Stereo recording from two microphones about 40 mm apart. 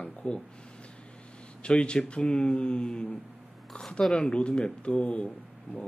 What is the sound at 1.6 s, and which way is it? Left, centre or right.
Speech, left.